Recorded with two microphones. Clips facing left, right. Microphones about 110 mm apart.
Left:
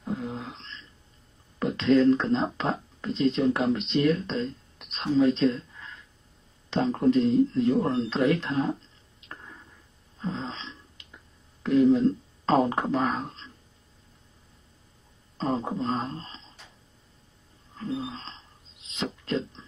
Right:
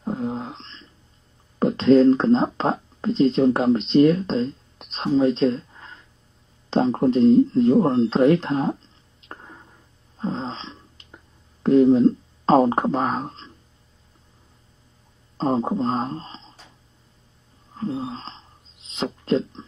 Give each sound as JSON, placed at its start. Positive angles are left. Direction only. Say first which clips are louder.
{"t": 0.0, "sound": "a sound", "louder": "right 6 dB", "side_deg": -35}
{"t": 1.6, "sound": "speech", "louder": "right 6 dB", "side_deg": -35}
{"t": 9.3, "sound": "a sound", "louder": "right 4 dB", "side_deg": -35}
{"t": 11.6, "sound": "speech", "louder": "right 5 dB", "side_deg": -35}
{"t": 15.3, "sound": "speech", "louder": "right 6 dB", "side_deg": -35}
{"t": 17.7, "sound": "speech", "louder": "right 5 dB", "side_deg": -35}